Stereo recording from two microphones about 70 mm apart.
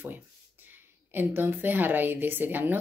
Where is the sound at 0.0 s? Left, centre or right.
Right.